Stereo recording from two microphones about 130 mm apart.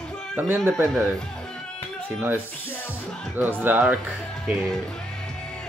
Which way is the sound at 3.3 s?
15° right (ahead or behind).